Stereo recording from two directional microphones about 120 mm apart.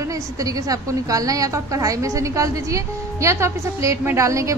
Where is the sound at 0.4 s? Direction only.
30° right (ahead or behind).